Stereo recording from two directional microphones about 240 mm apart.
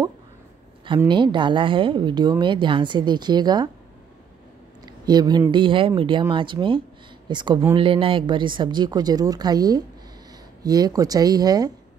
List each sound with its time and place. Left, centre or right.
0.8 s a woman's voice: centre
4.8 s a woman's voice: centre